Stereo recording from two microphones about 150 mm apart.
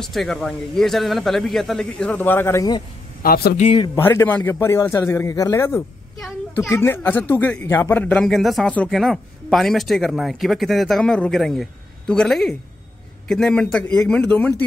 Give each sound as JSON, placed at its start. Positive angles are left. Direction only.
{"t": 0.0, "sound": "speech", "side_deg": 0}
{"t": 3.2, "sound": "a man's voice", "side_deg": 85}
{"t": 3.7, "sound": "speech", "side_deg": 30}
{"t": 4.0, "sound": "a man's voice", "side_deg": 15}